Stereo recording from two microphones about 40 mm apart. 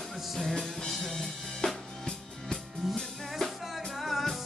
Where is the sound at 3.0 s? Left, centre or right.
Centre.